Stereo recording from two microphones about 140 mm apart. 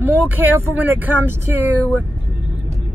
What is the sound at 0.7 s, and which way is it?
Speech, 10° right (ahead or behind).